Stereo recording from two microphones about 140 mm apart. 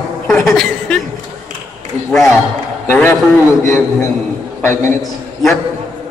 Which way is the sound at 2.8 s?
15° left (ahead or behind).